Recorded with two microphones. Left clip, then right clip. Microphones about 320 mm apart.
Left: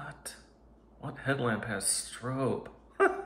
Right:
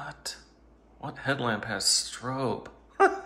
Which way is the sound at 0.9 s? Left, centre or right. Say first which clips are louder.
Right 3 dB; centre.